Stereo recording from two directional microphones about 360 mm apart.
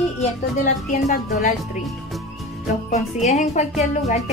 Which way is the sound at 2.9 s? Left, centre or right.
Centre.